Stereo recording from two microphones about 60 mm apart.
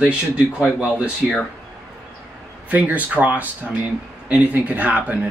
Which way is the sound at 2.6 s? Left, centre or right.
Right.